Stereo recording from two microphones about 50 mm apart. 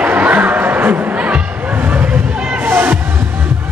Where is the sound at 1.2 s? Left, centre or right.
Right.